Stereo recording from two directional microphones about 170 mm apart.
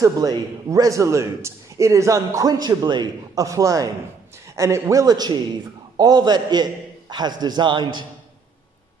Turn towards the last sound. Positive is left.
turn(degrees=-25)  # may be behind; listen again after turning